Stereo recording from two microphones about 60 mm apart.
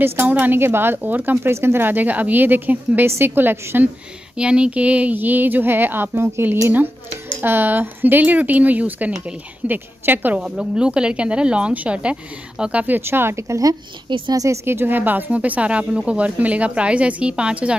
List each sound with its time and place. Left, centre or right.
0.0 s speech: right
3.1 s speech: right
4.4 s speech: centre; by 6.4 s right
7.4 s speech: right
10.4 s speech: centre
10.8 s speech: centre
12.8 s speech: right
14.7 s speech: right; by 17.7 s centre